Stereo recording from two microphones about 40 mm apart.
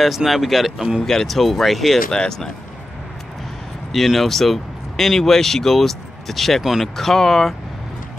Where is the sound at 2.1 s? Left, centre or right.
Centre.